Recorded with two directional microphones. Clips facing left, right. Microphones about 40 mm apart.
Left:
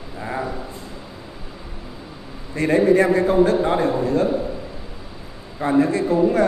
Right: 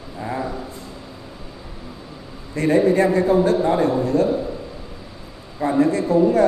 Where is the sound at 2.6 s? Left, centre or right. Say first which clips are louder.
Even; left.